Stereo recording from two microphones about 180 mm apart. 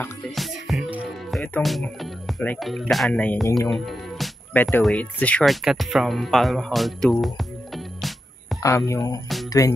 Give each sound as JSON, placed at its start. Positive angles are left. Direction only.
{"t": 0.4, "sound": "music", "side_deg": 0}
{"t": 1.4, "sound": "speech", "side_deg": 5}
{"t": 8.6, "sound": "speech", "side_deg": 15}